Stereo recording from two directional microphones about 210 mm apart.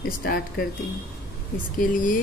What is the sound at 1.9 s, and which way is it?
Speech, 40° left (ahead or behind).